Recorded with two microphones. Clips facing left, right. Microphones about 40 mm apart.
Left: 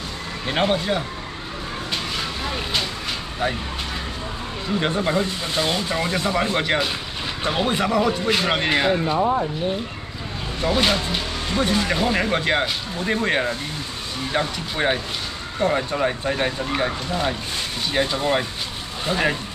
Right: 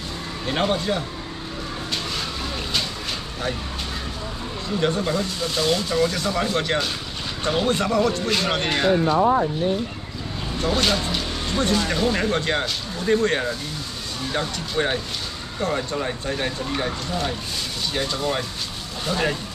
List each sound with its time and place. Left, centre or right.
0.5 s speech: centre
4.7 s speech: left
9.2 s speech: right
10.6 s speech: centre